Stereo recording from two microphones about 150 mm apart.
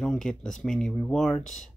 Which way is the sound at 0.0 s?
5° left (ahead or behind).